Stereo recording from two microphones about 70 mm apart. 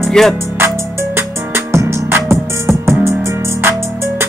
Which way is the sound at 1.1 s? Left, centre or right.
Right.